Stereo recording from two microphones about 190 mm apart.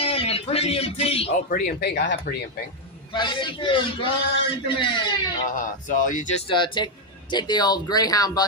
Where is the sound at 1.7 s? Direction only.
65° left (ahead or behind).